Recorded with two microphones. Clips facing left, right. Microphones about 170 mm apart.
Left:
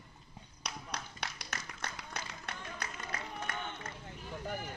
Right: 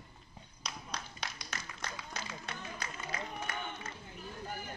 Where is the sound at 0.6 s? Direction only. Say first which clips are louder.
Left 1 dB; 65° left (ahead or behind).